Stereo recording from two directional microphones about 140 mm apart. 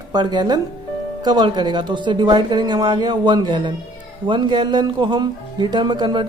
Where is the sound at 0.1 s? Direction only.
30° right (ahead or behind).